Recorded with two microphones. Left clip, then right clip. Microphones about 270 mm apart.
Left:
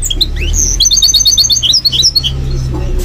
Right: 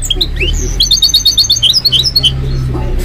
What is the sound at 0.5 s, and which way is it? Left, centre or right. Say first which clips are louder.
Chirp: left 2 dB; right.